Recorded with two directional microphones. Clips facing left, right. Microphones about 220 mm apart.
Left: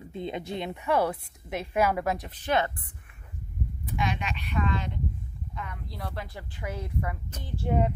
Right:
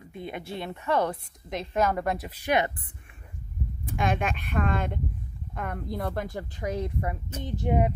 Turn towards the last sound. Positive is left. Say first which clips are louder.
# right 2 dB
turn(degrees=-15)  # may be behind; listen again after turning